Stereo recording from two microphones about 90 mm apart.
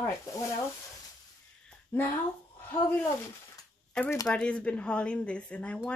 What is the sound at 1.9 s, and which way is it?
A woman's voice, 20° left (ahead or behind).